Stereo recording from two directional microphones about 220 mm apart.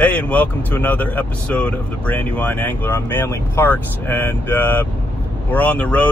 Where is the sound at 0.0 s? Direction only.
5° left (ahead or behind).